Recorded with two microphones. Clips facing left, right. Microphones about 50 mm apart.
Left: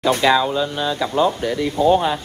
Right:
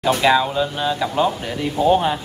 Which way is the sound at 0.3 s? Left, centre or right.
Centre.